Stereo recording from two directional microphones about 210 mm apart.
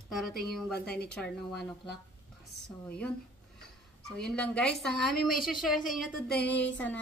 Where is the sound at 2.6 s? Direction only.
5° left (ahead or behind).